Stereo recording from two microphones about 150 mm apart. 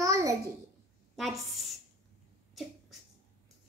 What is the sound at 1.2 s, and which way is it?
Speech, centre (ahead or behind).